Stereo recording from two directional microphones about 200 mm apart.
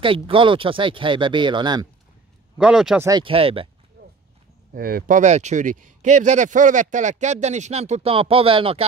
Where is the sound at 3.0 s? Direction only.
25° right (ahead or behind).